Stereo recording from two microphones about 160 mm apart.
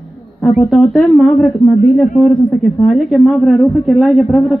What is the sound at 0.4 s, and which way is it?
A woman's voice, centre (ahead or behind).